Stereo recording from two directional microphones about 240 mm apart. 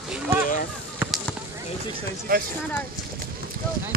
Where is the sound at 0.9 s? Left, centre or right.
Centre.